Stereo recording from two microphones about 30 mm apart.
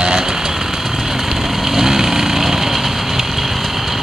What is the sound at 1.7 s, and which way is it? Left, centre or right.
Lawn mower, centre.